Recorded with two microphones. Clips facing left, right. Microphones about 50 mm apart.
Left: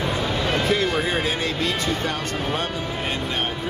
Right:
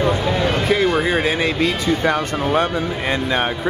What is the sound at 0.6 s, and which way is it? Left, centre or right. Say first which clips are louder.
Speech: right 6 dB; centre.